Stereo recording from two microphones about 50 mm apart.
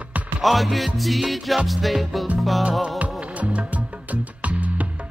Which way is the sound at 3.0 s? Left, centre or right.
Right.